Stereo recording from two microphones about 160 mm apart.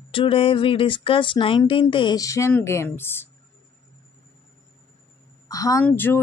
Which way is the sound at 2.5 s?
15° left (ahead or behind).